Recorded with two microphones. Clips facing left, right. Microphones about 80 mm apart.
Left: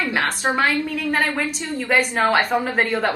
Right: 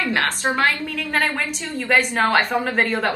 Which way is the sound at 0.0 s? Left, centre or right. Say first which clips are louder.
Even; centre.